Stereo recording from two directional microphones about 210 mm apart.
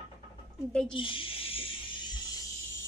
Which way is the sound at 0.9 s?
25° left (ahead or behind).